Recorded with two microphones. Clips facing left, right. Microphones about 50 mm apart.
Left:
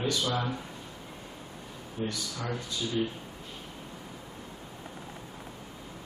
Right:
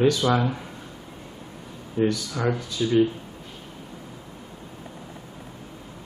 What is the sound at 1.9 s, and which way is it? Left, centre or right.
Speech, right.